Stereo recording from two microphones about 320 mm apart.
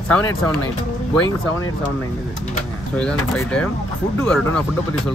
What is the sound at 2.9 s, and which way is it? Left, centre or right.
Speech, centre.